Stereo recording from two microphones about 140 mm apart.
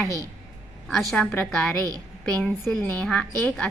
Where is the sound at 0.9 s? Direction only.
Centre (ahead or behind).